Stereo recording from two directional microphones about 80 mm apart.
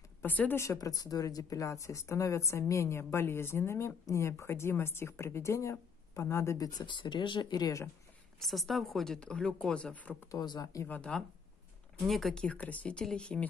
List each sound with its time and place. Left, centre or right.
0.2 s speech: left
0.7 s speech: left
6.6 s speech: left
8.4 s speech: centre
10.4 s speech: left
10.9 s speech: centre
12.1 s speech: centre
12.4 s speech: centre